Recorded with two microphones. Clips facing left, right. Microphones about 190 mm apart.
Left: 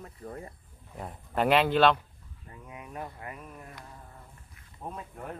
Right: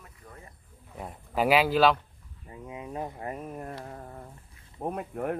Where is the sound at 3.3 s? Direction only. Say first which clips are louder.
Right 8 dB; 45° right (ahead or behind).